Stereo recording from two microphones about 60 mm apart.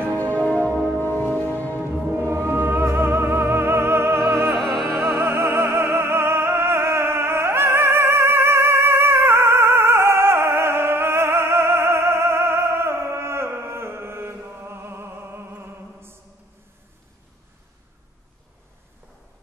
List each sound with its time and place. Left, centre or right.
0.2 s music: left
2.0 s music: right